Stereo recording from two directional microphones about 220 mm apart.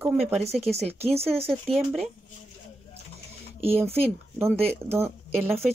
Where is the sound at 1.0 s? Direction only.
30° right (ahead or behind).